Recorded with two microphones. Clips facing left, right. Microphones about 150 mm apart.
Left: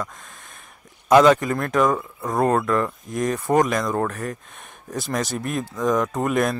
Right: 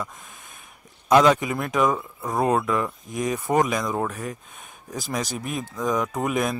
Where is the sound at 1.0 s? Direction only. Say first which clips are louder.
Left 3 dB; centre (ahead or behind).